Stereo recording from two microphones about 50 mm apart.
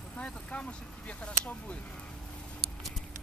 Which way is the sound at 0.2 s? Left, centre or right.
Left.